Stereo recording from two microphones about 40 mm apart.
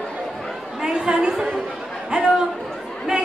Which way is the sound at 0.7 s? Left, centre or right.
Centre.